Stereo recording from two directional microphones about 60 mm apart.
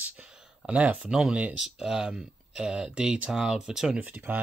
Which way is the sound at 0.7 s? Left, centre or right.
Right.